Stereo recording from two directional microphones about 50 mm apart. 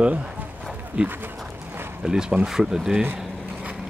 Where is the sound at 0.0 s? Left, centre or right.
Right.